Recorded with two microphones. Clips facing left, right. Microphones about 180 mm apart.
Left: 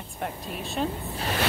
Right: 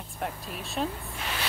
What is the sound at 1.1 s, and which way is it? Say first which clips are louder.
Music: left 6 dB; 35° left (ahead or behind).